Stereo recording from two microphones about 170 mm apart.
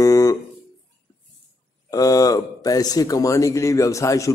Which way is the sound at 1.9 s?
20° left (ahead or behind).